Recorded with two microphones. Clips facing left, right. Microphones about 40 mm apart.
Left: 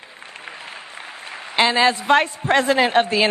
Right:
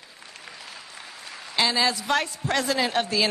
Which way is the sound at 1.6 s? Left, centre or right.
Left.